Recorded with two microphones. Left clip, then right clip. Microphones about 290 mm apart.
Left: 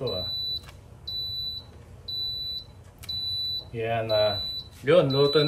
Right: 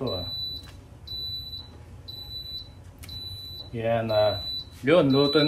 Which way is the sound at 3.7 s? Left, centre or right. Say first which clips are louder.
Right 3 dB; centre.